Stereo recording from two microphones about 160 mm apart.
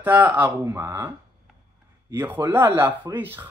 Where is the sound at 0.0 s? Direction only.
10° right (ahead or behind).